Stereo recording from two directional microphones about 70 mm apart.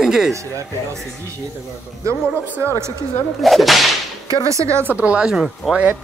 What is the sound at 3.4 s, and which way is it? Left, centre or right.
Speech, centre.